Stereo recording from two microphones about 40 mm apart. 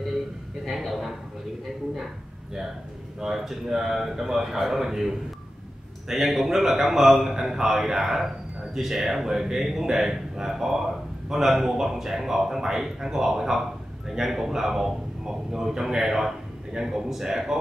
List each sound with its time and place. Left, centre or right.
0.7 s a man's voice: centre
3.2 s a man's voice: centre